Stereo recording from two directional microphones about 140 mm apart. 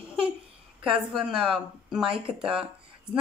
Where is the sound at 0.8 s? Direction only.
5° right (ahead or behind).